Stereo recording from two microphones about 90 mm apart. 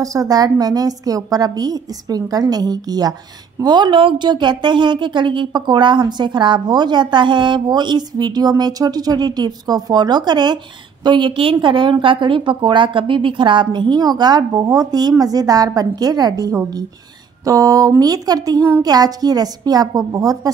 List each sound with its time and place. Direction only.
0.0 s a woman's voice: 40° right (ahead or behind)